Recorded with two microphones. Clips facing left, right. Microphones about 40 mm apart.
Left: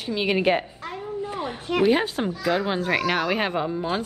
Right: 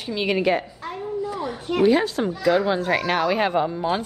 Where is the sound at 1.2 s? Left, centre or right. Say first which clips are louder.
Right 2 dB; left.